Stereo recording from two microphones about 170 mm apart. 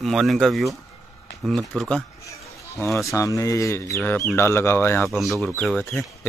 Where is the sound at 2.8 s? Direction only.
15° left (ahead or behind).